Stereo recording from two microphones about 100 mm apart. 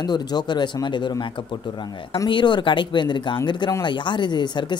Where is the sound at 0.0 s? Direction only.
45° left (ahead or behind).